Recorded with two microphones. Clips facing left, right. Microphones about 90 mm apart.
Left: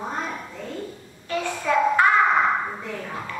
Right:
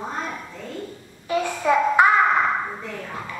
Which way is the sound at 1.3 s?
10° right (ahead or behind).